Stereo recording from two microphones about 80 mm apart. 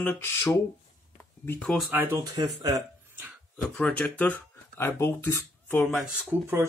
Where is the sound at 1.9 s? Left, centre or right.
Right.